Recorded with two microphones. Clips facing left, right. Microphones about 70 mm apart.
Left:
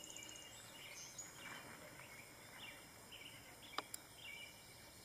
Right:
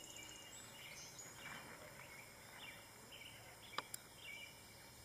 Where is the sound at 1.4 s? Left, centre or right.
Centre.